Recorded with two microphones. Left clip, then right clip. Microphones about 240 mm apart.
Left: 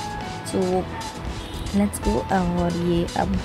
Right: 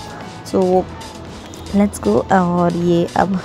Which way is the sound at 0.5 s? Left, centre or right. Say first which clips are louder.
Right 8 dB; centre.